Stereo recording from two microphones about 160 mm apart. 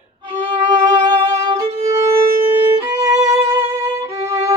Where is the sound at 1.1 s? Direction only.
20° right (ahead or behind).